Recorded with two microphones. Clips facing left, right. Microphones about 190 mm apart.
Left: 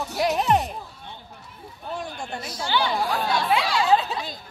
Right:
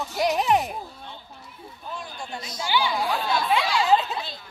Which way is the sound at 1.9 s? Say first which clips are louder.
Left 4 dB; 50° left (ahead or behind).